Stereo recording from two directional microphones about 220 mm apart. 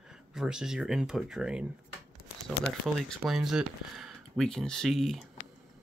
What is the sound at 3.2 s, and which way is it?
Speech, centre (ahead or behind).